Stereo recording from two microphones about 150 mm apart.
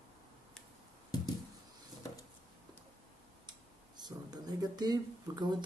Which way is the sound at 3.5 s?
30° right (ahead or behind).